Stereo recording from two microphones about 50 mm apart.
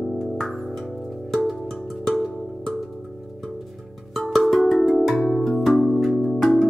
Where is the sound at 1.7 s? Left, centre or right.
Centre.